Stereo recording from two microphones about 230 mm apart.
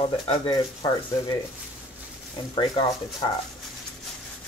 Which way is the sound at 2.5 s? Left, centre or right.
Left.